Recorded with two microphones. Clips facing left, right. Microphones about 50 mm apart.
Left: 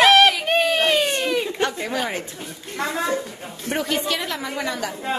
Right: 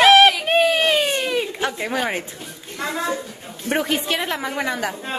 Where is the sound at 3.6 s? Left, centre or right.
Right.